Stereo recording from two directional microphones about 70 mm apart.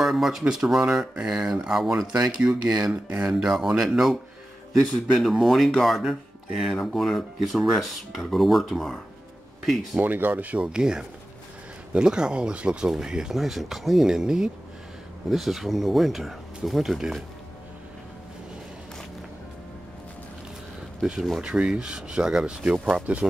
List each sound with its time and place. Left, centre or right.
0.0 s speech: centre
2.4 s speech: right
3.2 s speech: centre
9.9 s speech: right; by 17.2 s centre
21.0 s speech: centre